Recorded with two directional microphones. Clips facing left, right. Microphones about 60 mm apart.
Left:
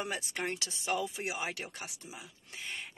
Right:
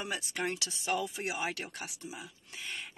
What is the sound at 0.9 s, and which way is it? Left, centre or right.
Speech, centre.